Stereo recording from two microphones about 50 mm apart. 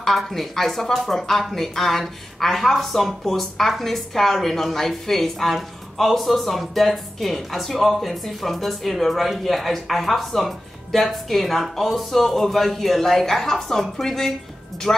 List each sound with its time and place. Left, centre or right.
0.0 s speech: centre